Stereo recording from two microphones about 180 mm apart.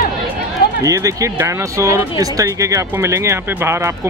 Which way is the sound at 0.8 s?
20° right (ahead or behind).